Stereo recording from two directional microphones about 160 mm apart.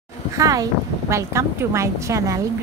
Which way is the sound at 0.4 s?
20° right (ahead or behind).